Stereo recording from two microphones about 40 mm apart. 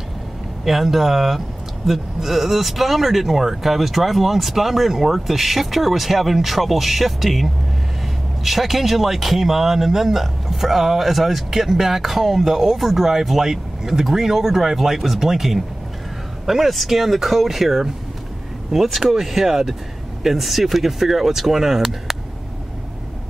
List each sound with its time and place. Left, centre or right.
0.7 s speech: centre